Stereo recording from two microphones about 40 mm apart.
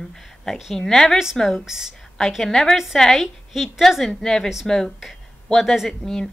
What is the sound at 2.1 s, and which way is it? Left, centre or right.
A woman's voice, centre.